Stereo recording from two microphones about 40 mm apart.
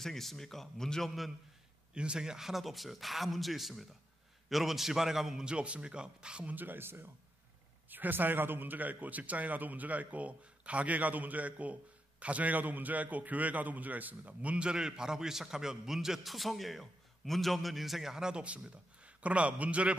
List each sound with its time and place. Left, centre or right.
0.0 s speech: centre
2.0 s a man's voice: right
5.4 s speech: right
6.4 s speech: right
6.8 s speech: right
7.9 s speech: right; by 18.3 s centre
18.3 s speech: right